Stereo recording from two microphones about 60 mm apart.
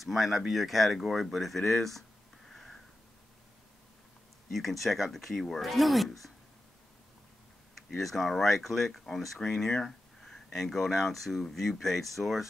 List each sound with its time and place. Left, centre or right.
0.0 s speech: centre
2.5 s a sound: centre
4.5 s speech: centre
7.7 s speech: centre